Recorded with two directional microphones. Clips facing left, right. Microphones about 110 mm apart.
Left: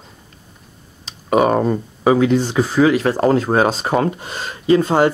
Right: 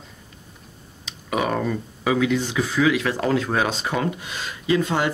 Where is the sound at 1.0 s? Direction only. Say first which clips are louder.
Left 9 dB; 40° left (ahead or behind).